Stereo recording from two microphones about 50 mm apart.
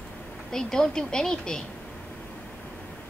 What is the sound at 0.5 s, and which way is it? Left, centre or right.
Speech, centre.